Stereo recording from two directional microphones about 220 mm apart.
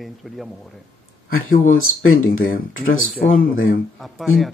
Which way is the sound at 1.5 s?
40° left (ahead or behind).